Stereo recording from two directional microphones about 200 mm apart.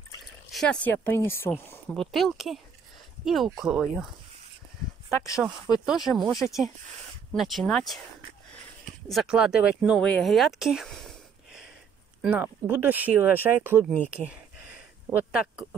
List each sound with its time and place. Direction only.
0.5 s speech: 5° left (ahead or behind)
5.1 s speech: 15° left (ahead or behind)
5.9 s speech: centre (ahead or behind)
7.3 s speech: centre (ahead or behind)
9.1 s speech: centre (ahead or behind)
14.1 s a sound: 5° right (ahead or behind)